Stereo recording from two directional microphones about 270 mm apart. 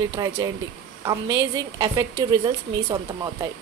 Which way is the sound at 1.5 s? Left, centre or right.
Centre.